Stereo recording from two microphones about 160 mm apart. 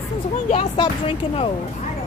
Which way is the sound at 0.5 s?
35° left (ahead or behind).